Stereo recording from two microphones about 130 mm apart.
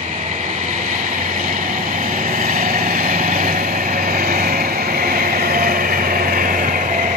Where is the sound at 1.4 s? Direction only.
80° right.